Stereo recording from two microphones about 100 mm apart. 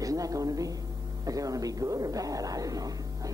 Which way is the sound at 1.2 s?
35° right (ahead or behind).